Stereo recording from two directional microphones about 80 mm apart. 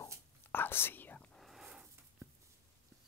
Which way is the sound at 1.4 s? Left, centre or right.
Centre.